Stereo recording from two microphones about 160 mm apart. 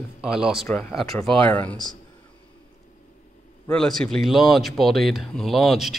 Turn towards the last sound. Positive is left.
turn(degrees=0)  # may be behind; listen again after turning